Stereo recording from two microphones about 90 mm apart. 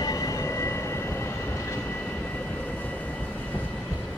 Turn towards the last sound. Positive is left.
turn(degrees=20)  # may be behind; listen again after turning